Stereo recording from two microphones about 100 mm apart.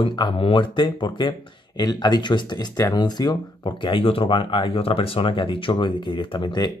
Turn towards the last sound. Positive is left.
turn(degrees=50)  # may be behind; listen again after turning